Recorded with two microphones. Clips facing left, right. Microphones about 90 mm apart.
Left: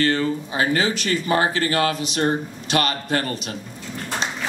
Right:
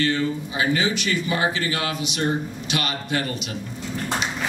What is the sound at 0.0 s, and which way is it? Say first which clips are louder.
Speech: left 2 dB; 45° left (ahead or behind).